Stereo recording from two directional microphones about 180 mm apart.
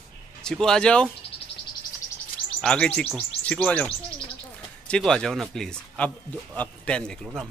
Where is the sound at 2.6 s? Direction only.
5° left (ahead or behind).